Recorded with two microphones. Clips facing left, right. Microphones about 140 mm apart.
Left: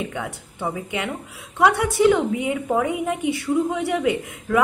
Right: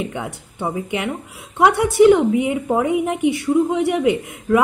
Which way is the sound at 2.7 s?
20° right (ahead or behind).